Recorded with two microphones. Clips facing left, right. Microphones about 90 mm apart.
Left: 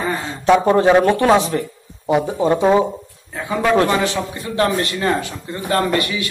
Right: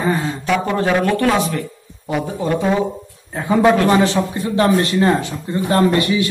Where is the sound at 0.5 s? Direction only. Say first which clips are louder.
Left 6 dB; 25° left (ahead or behind).